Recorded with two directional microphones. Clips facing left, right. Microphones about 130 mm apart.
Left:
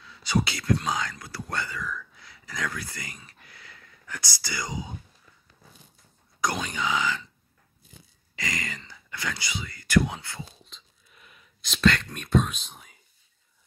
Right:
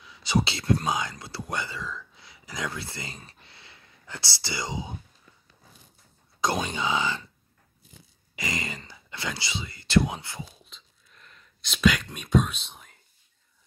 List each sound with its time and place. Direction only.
0.0 s speech: 20° right (ahead or behind)
3.3 s whispering: 30° right (ahead or behind)
4.4 s speech: 25° right (ahead or behind)
6.4 s speech: 25° right (ahead or behind)
8.4 s speech: 20° right (ahead or behind)
11.1 s speech: 10° left (ahead or behind)